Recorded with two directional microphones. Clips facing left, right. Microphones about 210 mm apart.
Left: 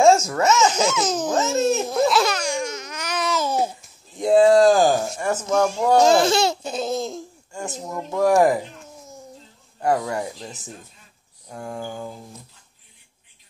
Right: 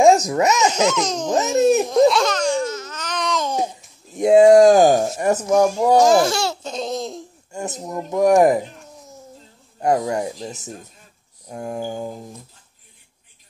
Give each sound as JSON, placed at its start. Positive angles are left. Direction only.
{"t": 0.0, "sound": "baby laughter", "side_deg": -15}
{"t": 0.8, "sound": "a sound", "side_deg": 5}
{"t": 1.3, "sound": "laughter", "side_deg": -15}
{"t": 1.9, "sound": "laughter", "side_deg": 5}
{"t": 4.1, "sound": "speech", "side_deg": -20}
{"t": 5.8, "sound": "laughter", "side_deg": -10}
{"t": 6.0, "sound": "speech", "side_deg": 20}
{"t": 7.5, "sound": "speech", "side_deg": -20}
{"t": 8.9, "sound": "a sound", "side_deg": 0}
{"t": 9.8, "sound": "speech", "side_deg": -20}
{"t": 10.5, "sound": "speech", "side_deg": -40}
{"t": 11.4, "sound": "speech", "side_deg": -25}